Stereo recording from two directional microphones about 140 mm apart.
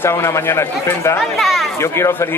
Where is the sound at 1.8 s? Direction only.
20° left (ahead or behind).